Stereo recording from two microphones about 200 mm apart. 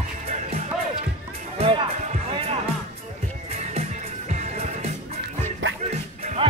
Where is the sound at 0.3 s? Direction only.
35° right (ahead or behind).